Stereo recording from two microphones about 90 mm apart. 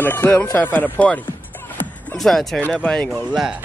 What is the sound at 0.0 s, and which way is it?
Speech, 25° left (ahead or behind).